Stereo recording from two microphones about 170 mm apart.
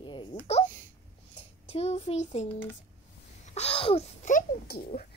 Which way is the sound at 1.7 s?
40° left (ahead or behind).